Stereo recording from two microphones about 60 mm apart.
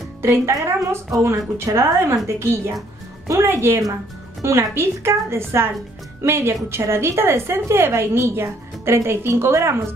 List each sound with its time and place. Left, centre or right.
0.2 s a woman's voice: right